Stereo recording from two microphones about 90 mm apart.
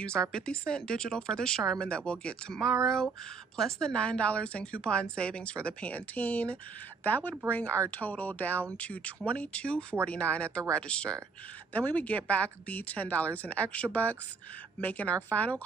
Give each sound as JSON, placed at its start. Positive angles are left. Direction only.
{"t": 0.0, "sound": "speech", "side_deg": 10}